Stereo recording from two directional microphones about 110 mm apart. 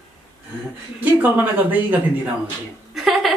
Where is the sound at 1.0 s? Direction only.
15° right (ahead or behind).